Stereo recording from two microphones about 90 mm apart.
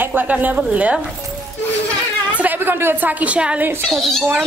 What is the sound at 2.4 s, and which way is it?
A woman's voice, 20° right (ahead or behind).